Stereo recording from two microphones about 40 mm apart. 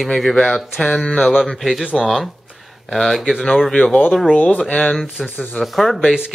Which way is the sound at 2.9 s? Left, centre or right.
Centre.